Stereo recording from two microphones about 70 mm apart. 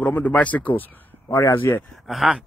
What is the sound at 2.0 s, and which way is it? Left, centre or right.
Speech, centre.